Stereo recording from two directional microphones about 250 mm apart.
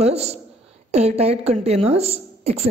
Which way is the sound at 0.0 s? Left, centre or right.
Right.